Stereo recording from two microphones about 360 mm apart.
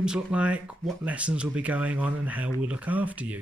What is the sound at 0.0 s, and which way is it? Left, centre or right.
Speech, centre.